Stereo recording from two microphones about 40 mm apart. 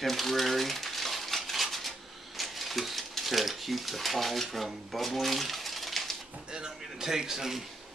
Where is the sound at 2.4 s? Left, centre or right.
Centre.